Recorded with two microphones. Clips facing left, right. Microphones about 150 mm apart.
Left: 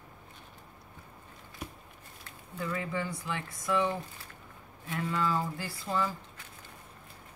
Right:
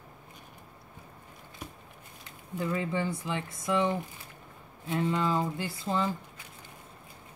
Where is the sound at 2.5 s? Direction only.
25° right (ahead or behind).